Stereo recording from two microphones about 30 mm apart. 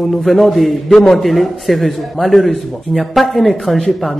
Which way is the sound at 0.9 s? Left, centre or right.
Left.